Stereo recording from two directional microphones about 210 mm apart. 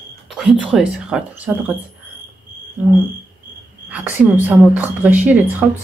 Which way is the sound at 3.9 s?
10° right (ahead or behind).